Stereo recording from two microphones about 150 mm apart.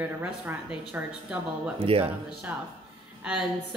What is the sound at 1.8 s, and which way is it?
Speech, 40° right (ahead or behind).